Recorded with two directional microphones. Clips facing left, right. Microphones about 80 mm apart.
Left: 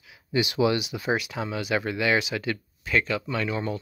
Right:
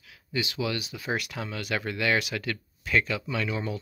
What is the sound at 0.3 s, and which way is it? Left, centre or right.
Speech, left.